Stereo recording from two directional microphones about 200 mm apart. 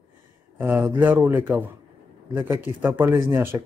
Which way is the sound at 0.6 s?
10° right (ahead or behind).